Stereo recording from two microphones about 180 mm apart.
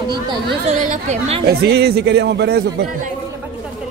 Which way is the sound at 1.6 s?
65° right (ahead or behind).